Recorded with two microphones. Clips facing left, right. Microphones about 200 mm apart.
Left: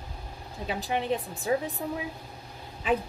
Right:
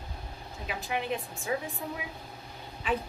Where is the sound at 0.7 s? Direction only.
35° left (ahead or behind).